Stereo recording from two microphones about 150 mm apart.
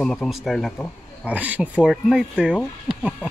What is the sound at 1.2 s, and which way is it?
Speech, 10° right (ahead or behind).